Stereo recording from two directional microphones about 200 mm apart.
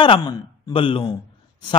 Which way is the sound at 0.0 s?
20° left (ahead or behind).